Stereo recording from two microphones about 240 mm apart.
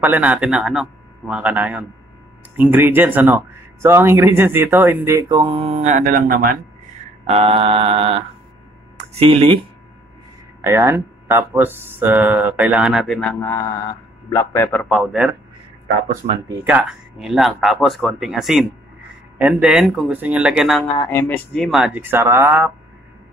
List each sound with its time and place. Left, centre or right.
0.0 s speech: centre; by 6.5 s right
7.2 s mantra: right
10.6 s a man's voice: centre
16.6 s speech: centre
21.0 s speech: centre